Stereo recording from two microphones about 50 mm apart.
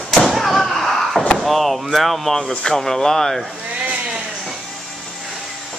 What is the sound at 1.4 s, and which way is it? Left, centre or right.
Speech, centre.